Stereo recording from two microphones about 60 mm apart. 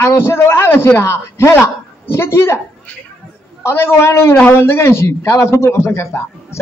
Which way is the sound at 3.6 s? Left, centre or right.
Left.